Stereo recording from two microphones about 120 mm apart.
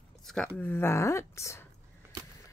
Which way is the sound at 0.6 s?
20° left (ahead or behind).